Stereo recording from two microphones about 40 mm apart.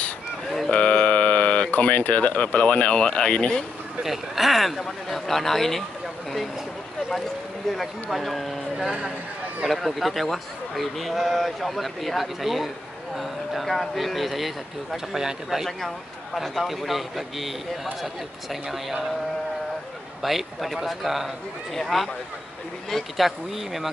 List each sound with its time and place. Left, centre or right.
0.7 s mantra: left
1.8 s speech: left
4.0 s speech: centre
7.7 s speech: centre
9.7 s speech: centre
15.1 s speech: centre
20.2 s speech: centre
23.1 s speech: centre